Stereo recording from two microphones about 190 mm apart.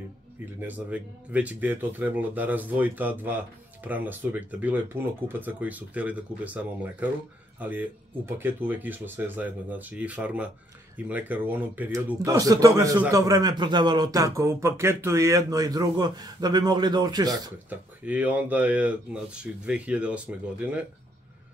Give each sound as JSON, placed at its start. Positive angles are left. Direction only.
{"t": 0.6, "sound": "speech", "side_deg": -10}
{"t": 17.6, "sound": "speech", "side_deg": -10}